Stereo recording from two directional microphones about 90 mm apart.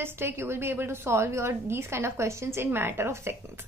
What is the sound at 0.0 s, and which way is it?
A woman's voice, 25° right (ahead or behind).